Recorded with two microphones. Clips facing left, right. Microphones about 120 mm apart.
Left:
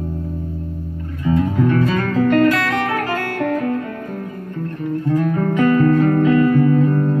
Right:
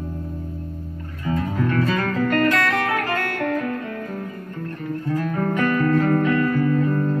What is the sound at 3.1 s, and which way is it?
Music, 15° left (ahead or behind).